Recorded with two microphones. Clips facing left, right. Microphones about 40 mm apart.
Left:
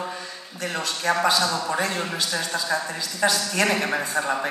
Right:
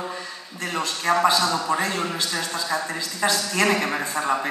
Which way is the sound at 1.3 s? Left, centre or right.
Right.